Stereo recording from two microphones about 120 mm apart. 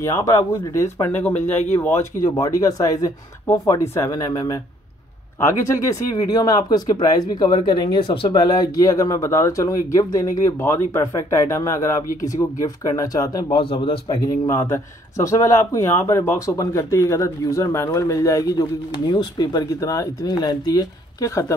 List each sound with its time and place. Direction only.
0.0 s speech: 25° left (ahead or behind)
2.2 s speech: 30° left (ahead or behind)
5.8 s speech: 30° left (ahead or behind)
8.5 s speech: 30° left (ahead or behind)
13.6 s a man's voice: 45° left (ahead or behind)
14.2 s speech: 30° left (ahead or behind)